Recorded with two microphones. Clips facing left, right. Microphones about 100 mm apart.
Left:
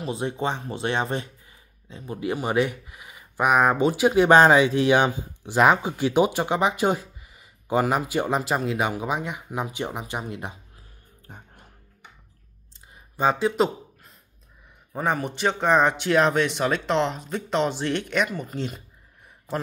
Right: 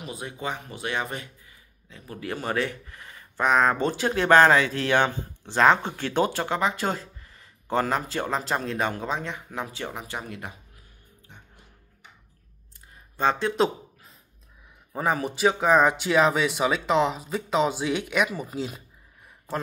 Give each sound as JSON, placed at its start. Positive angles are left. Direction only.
{"t": 0.0, "sound": "speech", "side_deg": 30}
{"t": 11.2, "sound": "music", "side_deg": 45}
{"t": 13.1, "sound": "speech", "side_deg": 5}